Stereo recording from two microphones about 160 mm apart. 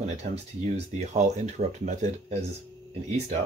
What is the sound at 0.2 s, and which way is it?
Speech, 45° right (ahead or behind).